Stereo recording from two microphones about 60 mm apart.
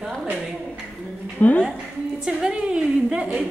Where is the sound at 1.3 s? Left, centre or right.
Left.